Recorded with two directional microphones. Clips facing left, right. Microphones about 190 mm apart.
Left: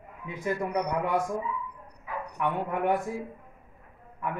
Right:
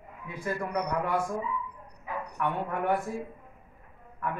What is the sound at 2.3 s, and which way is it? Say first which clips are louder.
Speech: left 2 dB; 20° left (ahead or behind).